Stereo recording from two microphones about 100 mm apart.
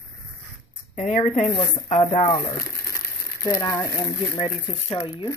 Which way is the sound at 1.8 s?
85° left.